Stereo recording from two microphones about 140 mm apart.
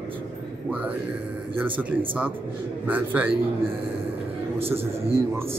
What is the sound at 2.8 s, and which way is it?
Speech, 10° right (ahead or behind).